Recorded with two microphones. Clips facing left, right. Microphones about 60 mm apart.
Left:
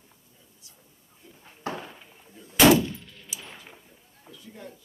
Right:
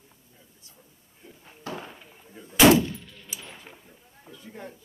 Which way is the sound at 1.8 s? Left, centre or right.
Centre.